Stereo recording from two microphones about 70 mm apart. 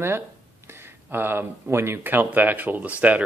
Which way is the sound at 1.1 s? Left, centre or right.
Right.